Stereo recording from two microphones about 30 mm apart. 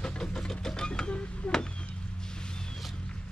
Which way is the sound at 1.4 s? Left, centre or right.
Left.